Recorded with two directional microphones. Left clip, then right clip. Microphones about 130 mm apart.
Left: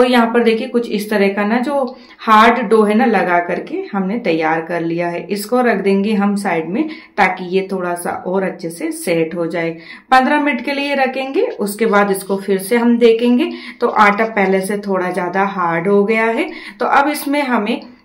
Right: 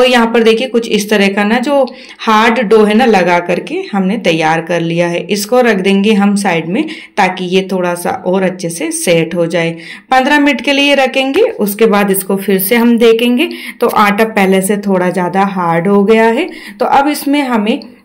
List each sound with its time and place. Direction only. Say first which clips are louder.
0.0 s a woman's voice: right 4 dB; 20° right (ahead or behind)
15.0 s speech: right 4 dB; 40° right (ahead or behind)